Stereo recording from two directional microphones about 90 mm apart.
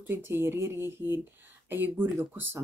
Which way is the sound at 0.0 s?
25° right (ahead or behind).